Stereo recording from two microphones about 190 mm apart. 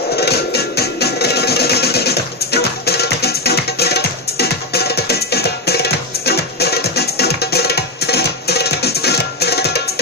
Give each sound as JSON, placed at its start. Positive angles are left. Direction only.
{"t": 0.1, "sound": "music", "side_deg": 60}